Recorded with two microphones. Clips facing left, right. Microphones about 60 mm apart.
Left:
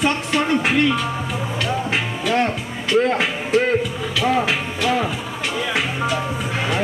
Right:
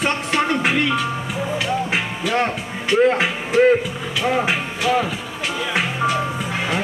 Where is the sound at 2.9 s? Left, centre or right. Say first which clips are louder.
Right 2 dB; centre.